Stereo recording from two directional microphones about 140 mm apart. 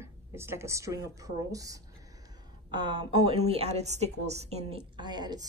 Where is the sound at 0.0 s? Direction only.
15° right (ahead or behind).